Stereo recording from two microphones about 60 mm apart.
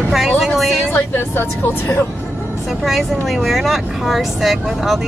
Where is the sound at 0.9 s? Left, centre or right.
Left.